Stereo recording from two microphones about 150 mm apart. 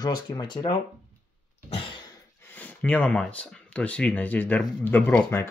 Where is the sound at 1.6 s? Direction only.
45° left (ahead or behind).